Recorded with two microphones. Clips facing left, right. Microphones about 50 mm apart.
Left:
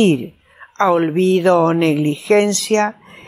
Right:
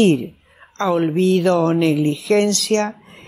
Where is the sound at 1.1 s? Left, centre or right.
Centre.